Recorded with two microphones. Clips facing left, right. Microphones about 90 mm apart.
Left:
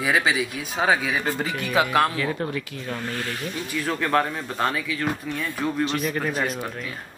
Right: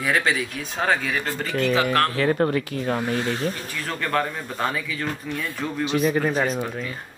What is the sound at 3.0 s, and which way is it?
Speech, 20° right (ahead or behind).